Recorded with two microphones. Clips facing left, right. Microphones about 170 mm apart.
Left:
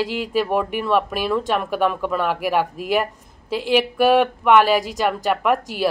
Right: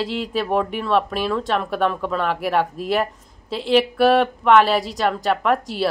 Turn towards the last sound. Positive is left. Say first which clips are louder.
# even
turn(degrees=5)  # may be behind; listen again after turning